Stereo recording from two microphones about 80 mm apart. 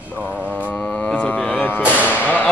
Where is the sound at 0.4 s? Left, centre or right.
Centre.